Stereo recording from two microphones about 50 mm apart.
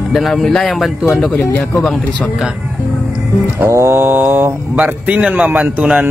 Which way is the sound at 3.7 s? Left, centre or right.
Right.